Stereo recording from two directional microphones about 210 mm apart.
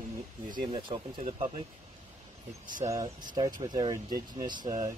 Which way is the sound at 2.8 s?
15° right (ahead or behind).